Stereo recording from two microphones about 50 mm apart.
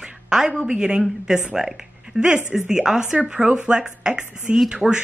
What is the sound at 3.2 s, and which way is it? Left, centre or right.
Speech, right.